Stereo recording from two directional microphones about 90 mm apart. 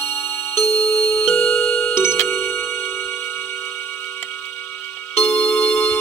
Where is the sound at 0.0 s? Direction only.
25° left (ahead or behind).